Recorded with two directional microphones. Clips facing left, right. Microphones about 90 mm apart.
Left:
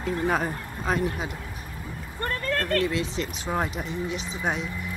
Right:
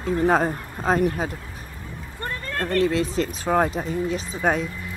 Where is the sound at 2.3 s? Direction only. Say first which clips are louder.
Left 1 dB; 20° right (ahead or behind); by 4.7 s 45° right (ahead or behind).